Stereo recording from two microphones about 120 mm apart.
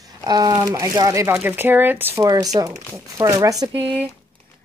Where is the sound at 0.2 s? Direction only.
35° right (ahead or behind); by 2.2 s 15° right (ahead or behind).